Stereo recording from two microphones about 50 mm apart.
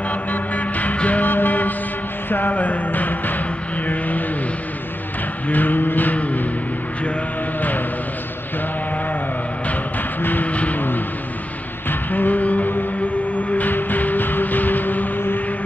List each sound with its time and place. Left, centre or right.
0.1 s music: left
3.8 s vehicle: left
5.5 s vehicle: left
10.2 s music: left
11.9 s music: left